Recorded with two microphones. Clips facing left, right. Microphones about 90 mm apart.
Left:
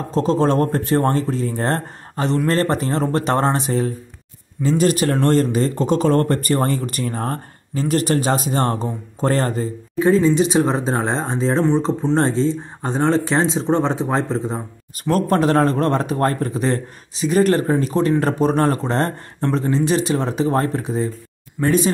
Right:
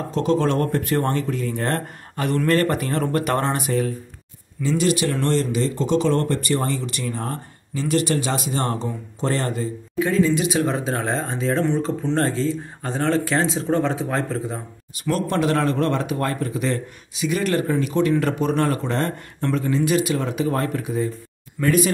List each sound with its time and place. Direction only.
0.1 s speech: 35° left (ahead or behind)
4.6 s speech: 45° left (ahead or behind); by 14.6 s 25° left (ahead or behind)
15.0 s speech: 40° left (ahead or behind)